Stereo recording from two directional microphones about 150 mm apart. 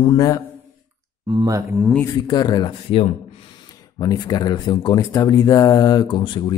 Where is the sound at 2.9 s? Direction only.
40° left (ahead or behind).